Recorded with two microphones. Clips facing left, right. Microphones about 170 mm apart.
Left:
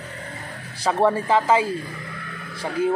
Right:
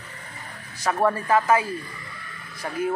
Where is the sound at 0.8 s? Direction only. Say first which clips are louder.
Left 3 dB; 30° left (ahead or behind).